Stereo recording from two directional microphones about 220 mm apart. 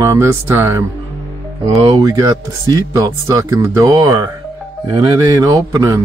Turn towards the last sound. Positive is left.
turn(degrees=-15)  # may be behind; listen again after turning